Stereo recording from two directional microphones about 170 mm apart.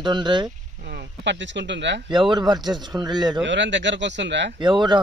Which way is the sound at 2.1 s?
25° right (ahead or behind).